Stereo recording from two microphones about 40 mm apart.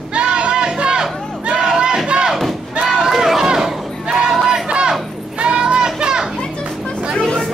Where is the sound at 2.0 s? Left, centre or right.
Right.